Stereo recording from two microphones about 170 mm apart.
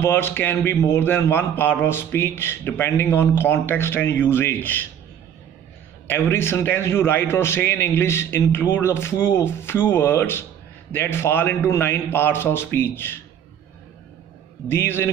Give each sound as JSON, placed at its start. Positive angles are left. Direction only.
{"t": 0.0, "sound": "a man's voice", "side_deg": 15}
{"t": 6.0, "sound": "a man's voice", "side_deg": 15}
{"t": 14.7, "sound": "a man's voice", "side_deg": 15}